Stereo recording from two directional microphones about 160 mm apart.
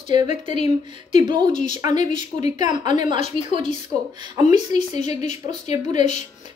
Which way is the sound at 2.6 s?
25° right (ahead or behind).